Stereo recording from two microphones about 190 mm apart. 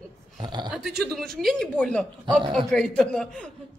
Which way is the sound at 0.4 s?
25° right (ahead or behind).